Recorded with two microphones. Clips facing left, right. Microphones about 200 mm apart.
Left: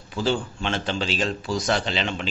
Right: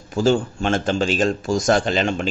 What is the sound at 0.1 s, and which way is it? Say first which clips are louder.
Speech: right 7 dB; 45° right (ahead or behind).